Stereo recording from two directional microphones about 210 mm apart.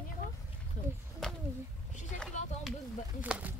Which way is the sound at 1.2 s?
5° left (ahead or behind).